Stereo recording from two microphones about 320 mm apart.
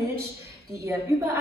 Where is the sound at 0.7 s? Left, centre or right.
Centre.